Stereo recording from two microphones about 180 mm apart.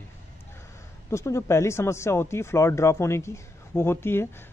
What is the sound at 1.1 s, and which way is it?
Speech, 15° left (ahead or behind).